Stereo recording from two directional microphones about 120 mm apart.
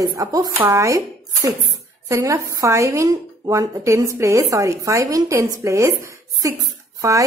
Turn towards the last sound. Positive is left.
turn(degrees=-25)  # may be behind; listen again after turning